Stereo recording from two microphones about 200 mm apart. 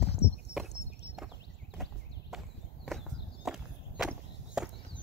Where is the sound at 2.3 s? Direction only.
Centre (ahead or behind).